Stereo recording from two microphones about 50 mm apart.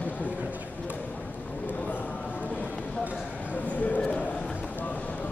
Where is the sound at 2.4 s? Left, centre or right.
Left.